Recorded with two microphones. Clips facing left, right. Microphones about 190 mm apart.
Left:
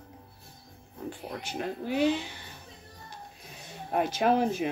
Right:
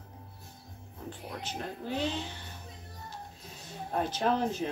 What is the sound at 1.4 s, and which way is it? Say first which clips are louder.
Speech: left 5 dB; 10° left (ahead or behind).